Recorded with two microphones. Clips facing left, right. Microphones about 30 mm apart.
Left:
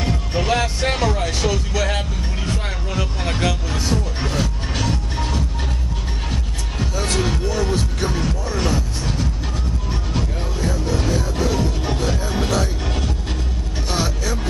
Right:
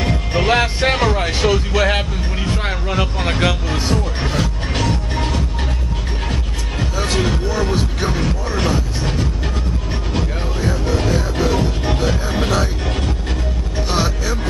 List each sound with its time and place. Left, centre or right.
0.0 s music: right
6.8 s music: centre
8.2 s a sound: right
10.1 s music: centre
13.8 s vehicle: centre